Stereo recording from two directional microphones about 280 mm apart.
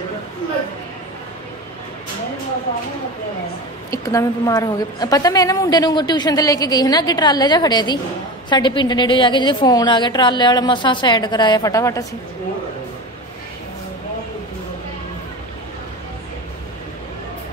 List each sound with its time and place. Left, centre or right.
3.9 s a woman's voice: centre